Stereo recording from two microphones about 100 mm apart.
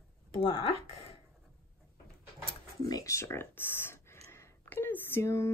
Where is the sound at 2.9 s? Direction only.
35° left (ahead or behind).